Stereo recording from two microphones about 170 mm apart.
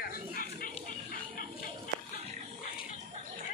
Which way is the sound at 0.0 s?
60° left (ahead or behind).